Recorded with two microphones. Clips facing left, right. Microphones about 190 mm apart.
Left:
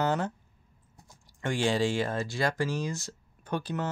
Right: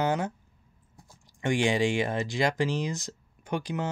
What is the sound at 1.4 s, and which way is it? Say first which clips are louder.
Speech: right 2 dB; 15° right (ahead or behind).